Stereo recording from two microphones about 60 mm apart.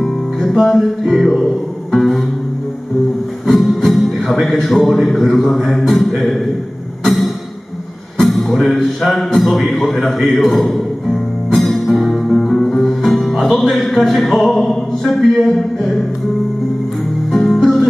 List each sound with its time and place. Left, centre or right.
0.0 s music: centre
1.1 s a man's voice: centre
1.9 s music: centre
3.4 s speech: centre
8.2 s a man's voice: centre
11.5 s music: centre
12.5 s music: centre
12.8 s music: centre
15.0 s a man's voice: centre
17.3 s music: centre